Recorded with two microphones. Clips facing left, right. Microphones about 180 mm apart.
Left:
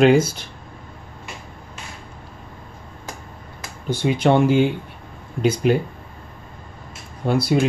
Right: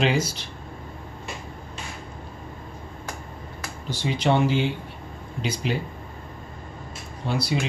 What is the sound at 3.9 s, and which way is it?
Speech, 50° left (ahead or behind).